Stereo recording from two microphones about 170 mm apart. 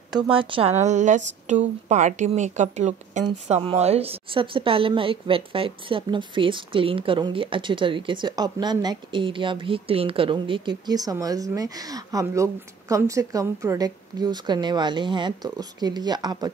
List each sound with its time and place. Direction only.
0.1 s a woman's voice: 25° right (ahead or behind)